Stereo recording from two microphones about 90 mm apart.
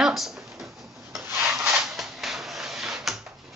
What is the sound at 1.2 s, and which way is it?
Rub, 25° right (ahead or behind).